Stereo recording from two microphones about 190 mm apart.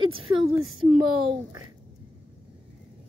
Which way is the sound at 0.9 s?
25° right (ahead or behind).